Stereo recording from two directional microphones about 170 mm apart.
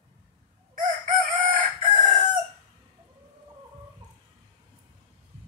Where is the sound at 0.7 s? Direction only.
50° right (ahead or behind).